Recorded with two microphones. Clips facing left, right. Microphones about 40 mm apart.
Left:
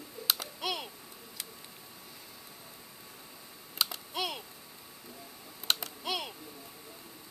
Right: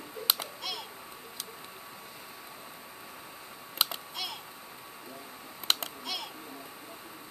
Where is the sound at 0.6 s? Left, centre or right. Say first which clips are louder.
Left 3 dB; centre.